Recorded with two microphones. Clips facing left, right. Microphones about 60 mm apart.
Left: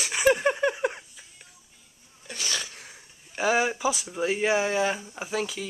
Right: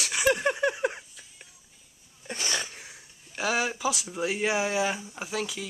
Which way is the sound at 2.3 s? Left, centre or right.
Right.